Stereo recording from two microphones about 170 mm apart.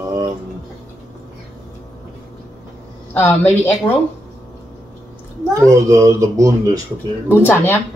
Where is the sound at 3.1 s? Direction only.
10° left (ahead or behind).